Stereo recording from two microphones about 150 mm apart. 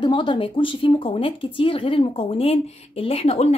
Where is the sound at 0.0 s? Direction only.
30° left (ahead or behind).